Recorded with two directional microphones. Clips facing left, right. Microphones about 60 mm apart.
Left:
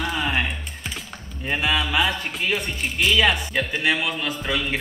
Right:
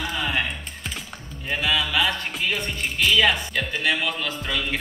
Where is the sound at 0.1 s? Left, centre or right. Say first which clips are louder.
Even; centre.